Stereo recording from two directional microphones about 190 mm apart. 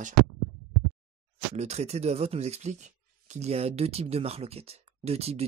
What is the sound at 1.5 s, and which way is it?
Speech, 35° right (ahead or behind).